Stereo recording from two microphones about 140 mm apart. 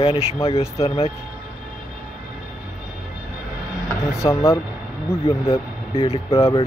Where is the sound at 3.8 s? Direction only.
20° left (ahead or behind).